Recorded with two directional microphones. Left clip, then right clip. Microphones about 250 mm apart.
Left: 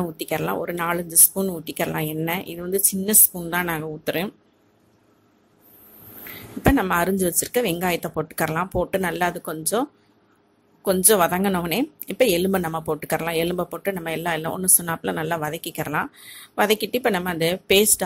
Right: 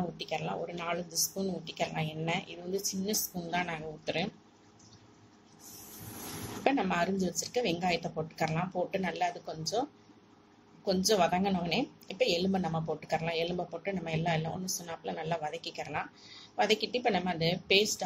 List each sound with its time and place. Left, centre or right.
0.2 s a woman's voice: left
6.6 s a woman's voice: left
10.9 s a woman's voice: left